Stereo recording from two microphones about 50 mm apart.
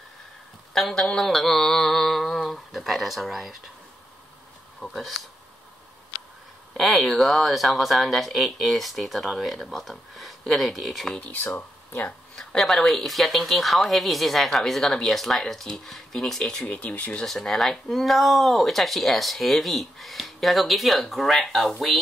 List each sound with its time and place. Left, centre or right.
0.7 s speech: centre
1.2 s mantra: centre
4.7 s speech: centre
6.8 s speech: centre
12.4 s speech: centre
16.6 s speech: left
17.2 s speech: centre